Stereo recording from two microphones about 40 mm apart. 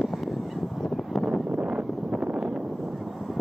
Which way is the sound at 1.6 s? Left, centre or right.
Right.